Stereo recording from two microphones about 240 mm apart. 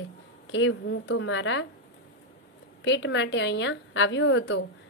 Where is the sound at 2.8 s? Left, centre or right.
Left.